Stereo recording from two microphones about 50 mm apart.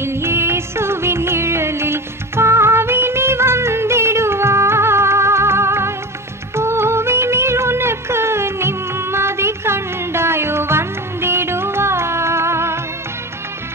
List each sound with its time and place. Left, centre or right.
0.0 s music: right